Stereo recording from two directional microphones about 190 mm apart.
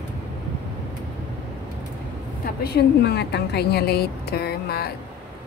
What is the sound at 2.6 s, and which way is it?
A woman's voice, 60° left (ahead or behind).